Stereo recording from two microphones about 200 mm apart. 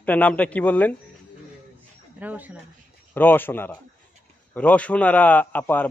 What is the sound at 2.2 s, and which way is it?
Speech, 10° right (ahead or behind).